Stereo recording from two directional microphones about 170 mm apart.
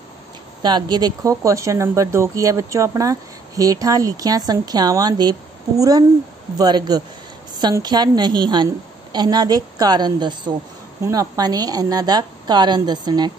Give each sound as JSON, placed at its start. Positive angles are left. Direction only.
{"t": 0.6, "sound": "speech", "side_deg": -25}